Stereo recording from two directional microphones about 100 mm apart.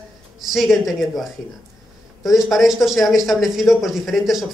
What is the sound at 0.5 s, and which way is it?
A man's voice, centre (ahead or behind).